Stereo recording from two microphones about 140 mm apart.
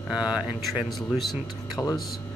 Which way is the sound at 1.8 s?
20° left (ahead or behind).